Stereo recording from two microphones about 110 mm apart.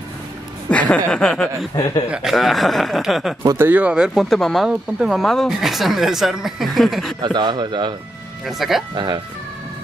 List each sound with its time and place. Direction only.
0.7 s chuckle: 10° left (ahead or behind)
2.0 s speech: 5° right (ahead or behind)
3.4 s speech: 20° right (ahead or behind); by 7.2 s centre (ahead or behind)
7.2 s speech: 40° right (ahead or behind)
8.5 s speech: centre (ahead or behind)
8.9 s speech: 40° right (ahead or behind)